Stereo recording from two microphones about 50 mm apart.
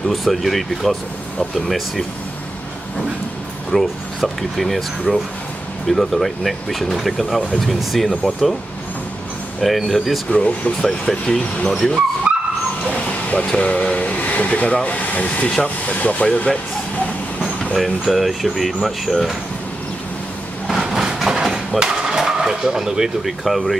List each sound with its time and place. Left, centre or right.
0.1 s speech: centre
3.7 s speech: centre
5.9 s speech: centre
9.6 s speech: centre
10.3 s speech: left
10.8 s speech: centre
11.7 s speech: centre
12.3 s vehicle: right
12.9 s a sound: left
13.6 s speech: left
17.7 s speech: centre
20.8 s a sound: centre